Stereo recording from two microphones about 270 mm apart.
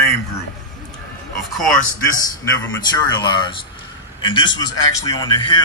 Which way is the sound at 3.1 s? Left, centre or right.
Centre.